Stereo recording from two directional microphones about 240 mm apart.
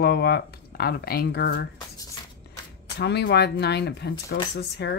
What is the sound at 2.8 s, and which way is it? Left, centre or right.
Speech, left.